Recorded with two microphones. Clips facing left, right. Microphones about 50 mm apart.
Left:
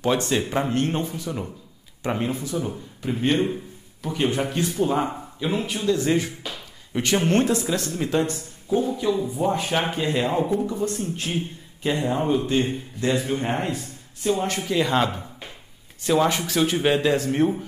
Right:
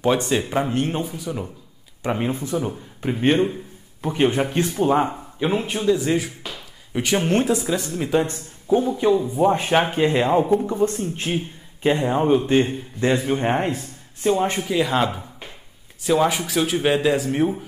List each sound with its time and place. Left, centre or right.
0.3 s speech: centre
2.3 s a man's voice: right
5.9 s speech: centre
8.3 s a man's voice: right
14.7 s speech: centre